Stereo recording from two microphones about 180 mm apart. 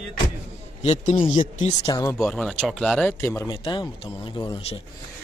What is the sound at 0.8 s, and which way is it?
Speech, 40° left (ahead or behind).